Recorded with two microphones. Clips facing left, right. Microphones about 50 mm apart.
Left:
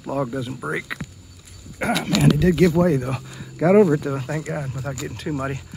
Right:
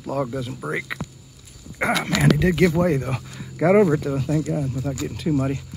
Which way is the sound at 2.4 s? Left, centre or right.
Centre.